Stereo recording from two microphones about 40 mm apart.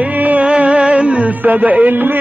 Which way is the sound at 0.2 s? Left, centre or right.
Right.